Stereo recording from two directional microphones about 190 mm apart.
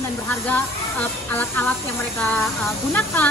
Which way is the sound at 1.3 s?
10° left (ahead or behind).